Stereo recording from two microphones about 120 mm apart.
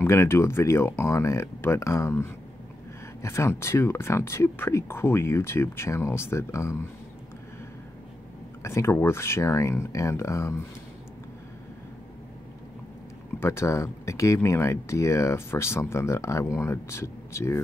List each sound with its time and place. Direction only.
0.0 s speech: 20° left (ahead or behind)
8.6 s speech: 20° left (ahead or behind)
13.4 s speech: 20° left (ahead or behind)